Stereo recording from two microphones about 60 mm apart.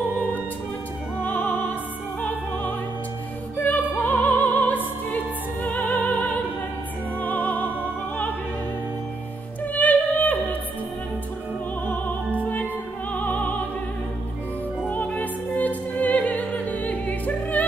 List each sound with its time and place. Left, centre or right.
1.2 s music: left
3.5 s opera: left
7.2 s music: left
9.8 s music: left
11.8 s music: left
14.9 s music: left